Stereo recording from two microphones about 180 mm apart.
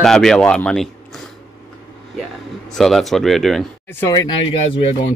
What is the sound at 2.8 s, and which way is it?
Speech, centre (ahead or behind).